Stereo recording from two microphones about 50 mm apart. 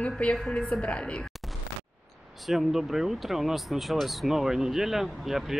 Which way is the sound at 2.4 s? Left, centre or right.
Centre.